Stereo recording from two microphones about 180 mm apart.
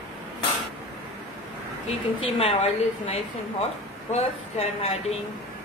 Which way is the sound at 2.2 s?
35° left (ahead or behind).